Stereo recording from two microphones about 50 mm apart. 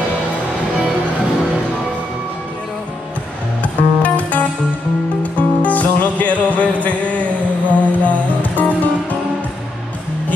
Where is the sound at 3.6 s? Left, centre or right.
Left.